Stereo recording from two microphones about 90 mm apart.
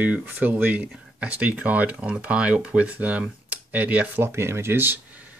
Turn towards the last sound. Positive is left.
turn(degrees=-20)  # may be behind; listen again after turning